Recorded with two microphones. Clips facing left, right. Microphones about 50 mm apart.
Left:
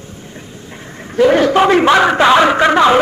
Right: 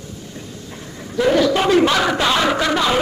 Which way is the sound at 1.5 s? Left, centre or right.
Left.